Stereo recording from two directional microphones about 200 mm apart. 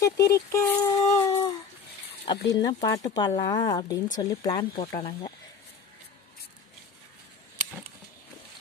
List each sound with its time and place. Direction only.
0.0 s speech: 15° left (ahead or behind)